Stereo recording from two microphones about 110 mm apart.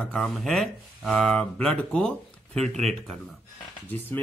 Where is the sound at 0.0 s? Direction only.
5° left (ahead or behind).